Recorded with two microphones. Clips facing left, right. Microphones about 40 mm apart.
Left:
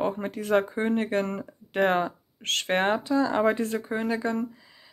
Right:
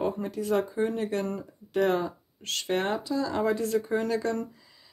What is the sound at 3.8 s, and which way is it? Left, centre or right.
Speech, centre.